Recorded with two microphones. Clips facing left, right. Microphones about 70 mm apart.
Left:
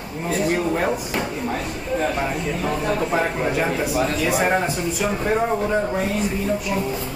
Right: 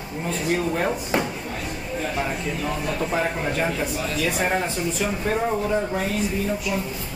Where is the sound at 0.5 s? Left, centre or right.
Centre.